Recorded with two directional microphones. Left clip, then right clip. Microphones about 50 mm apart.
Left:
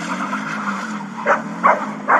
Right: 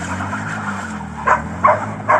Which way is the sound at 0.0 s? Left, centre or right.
Centre.